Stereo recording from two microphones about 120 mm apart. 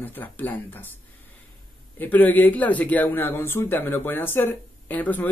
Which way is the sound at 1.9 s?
15° left (ahead or behind).